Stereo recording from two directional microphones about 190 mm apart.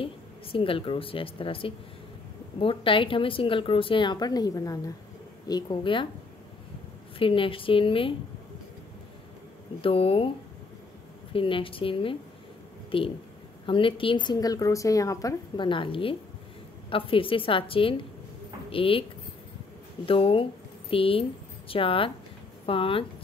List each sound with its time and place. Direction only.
0.0 s a woman's voice: 30° left (ahead or behind)
7.2 s a woman's voice: 30° left (ahead or behind)
9.8 s a woman's voice: 30° left (ahead or behind)
11.3 s a woman's voice: 30° left (ahead or behind)
20.1 s a woman's voice: 30° left (ahead or behind)